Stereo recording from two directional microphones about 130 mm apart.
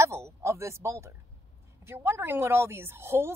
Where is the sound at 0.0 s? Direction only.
20° right (ahead or behind).